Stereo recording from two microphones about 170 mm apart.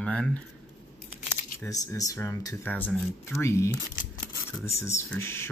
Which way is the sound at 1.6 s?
20° left (ahead or behind).